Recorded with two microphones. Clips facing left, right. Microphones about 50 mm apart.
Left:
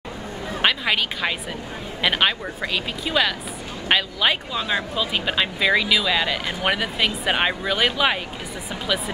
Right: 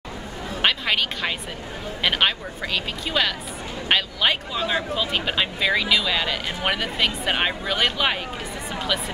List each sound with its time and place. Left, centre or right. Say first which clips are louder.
0.6 s speech: left 1 dB; centre